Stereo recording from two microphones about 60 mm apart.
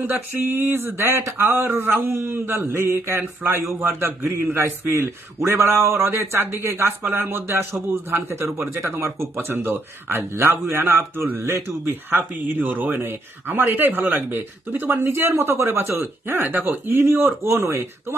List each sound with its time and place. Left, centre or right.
0.0 s a man's voice: right